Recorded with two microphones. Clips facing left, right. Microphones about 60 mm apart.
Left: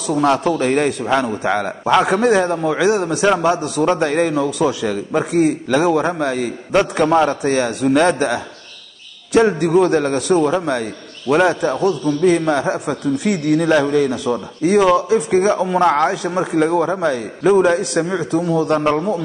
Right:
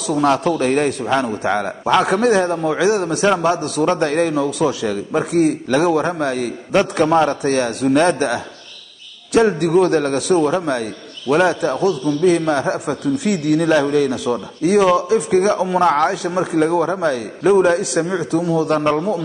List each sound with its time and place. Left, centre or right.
0.0 s a man's voice: centre